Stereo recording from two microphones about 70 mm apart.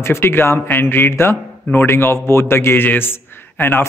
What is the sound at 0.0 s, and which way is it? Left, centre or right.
A man's voice, left.